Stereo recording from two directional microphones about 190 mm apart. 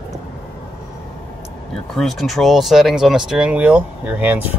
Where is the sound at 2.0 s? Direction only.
Centre (ahead or behind).